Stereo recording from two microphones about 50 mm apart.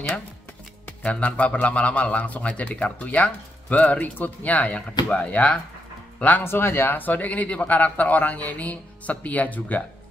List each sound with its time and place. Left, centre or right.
0.8 s speech: left
6.4 s speech: left